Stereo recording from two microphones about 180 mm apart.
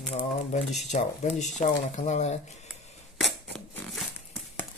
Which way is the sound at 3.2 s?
5° left (ahead or behind).